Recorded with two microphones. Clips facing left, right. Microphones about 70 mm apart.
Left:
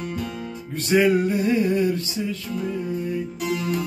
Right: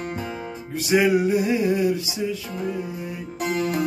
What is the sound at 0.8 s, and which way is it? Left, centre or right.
Music, centre.